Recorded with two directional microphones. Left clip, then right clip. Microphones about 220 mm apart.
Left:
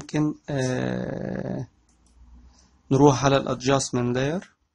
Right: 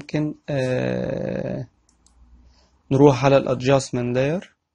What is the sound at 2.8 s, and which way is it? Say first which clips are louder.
Speech: right 3 dB; centre (ahead or behind).